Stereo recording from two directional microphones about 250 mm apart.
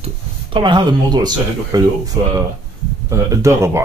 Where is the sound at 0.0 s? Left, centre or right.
Centre.